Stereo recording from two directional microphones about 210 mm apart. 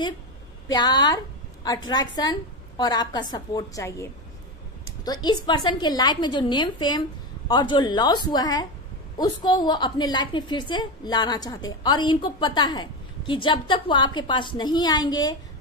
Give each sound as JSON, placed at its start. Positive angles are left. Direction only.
{"t": 0.7, "sound": "a woman's voice", "side_deg": 20}